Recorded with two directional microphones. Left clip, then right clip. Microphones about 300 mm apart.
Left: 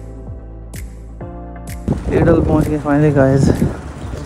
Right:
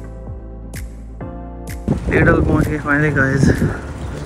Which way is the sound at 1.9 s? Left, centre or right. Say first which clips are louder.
Left 1 dB; centre.